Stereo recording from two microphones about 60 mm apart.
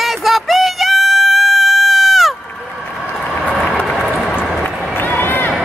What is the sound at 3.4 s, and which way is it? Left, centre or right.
Vehicle, centre.